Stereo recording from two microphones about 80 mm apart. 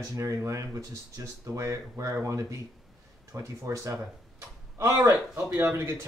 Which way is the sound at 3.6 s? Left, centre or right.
Right.